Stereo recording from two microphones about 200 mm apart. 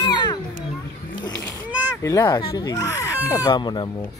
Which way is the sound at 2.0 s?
15° left (ahead or behind).